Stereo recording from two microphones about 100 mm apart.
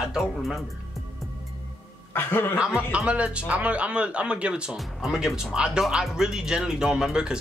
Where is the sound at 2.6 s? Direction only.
10° right (ahead or behind).